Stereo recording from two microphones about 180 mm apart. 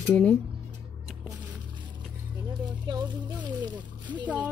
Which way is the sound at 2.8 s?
25° right (ahead or behind).